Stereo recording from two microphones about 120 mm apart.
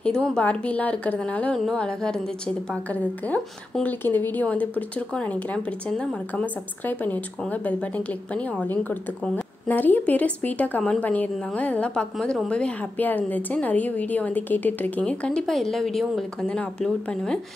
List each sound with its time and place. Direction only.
0.0 s a woman's voice: 5° left (ahead or behind)